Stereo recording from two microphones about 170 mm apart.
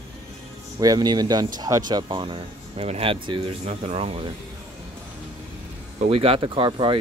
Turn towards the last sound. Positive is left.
turn(degrees=-30)  # may be behind; listen again after turning